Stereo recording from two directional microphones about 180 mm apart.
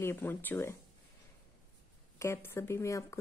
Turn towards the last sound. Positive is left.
turn(degrees=15)  # may be behind; listen again after turning